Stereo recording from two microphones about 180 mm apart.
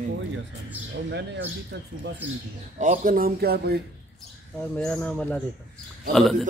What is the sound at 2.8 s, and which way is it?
Speech, 45° right (ahead or behind).